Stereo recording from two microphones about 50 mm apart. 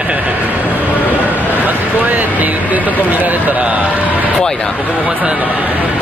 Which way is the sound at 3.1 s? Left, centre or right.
Right.